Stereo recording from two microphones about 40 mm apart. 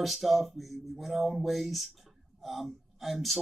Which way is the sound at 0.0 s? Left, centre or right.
Centre.